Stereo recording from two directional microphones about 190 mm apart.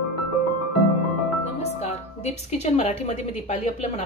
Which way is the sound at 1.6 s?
35° left (ahead or behind).